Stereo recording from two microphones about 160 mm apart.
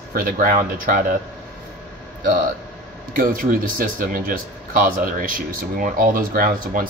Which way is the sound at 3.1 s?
60° right (ahead or behind).